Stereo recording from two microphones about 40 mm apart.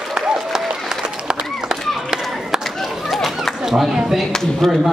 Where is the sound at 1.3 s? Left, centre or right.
Centre.